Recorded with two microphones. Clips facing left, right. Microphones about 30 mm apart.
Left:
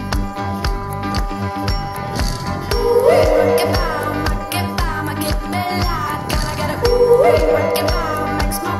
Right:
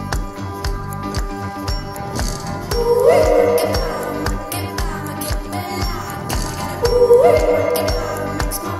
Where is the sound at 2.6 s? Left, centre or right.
Left.